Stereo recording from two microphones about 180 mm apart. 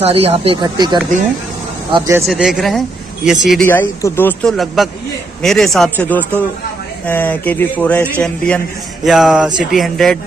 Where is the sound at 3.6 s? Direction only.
10° left (ahead or behind).